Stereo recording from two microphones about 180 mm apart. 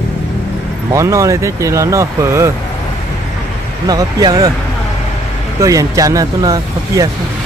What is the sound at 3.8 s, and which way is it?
Speech, 20° right (ahead or behind).